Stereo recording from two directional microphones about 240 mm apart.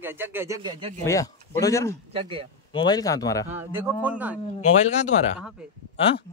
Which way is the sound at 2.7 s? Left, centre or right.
Centre.